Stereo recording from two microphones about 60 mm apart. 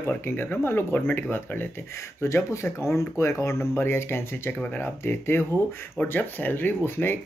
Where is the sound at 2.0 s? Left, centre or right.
Left.